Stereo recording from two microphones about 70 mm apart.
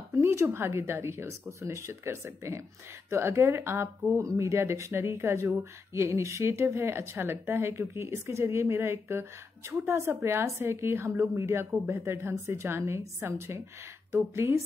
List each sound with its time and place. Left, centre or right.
0.1 s speech: right